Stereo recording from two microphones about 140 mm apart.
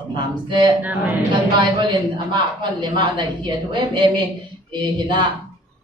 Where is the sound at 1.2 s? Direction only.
30° right (ahead or behind).